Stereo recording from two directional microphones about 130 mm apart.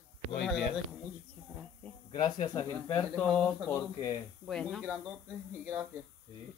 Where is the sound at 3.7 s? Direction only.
25° left (ahead or behind).